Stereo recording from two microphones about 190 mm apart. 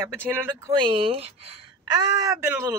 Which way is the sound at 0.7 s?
25° right (ahead or behind).